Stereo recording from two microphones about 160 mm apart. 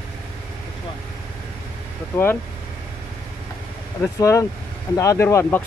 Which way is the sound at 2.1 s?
15° left (ahead or behind).